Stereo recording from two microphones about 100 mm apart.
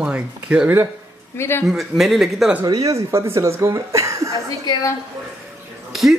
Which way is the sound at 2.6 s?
35° right (ahead or behind).